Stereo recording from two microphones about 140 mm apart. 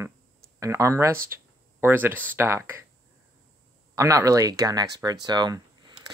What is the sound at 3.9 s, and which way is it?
Speech, 25° right (ahead or behind).